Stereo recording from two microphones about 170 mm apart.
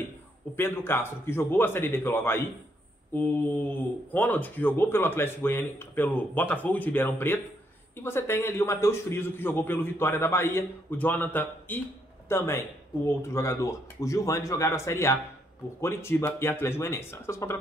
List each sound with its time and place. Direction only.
0.6 s speech: 15° left (ahead or behind)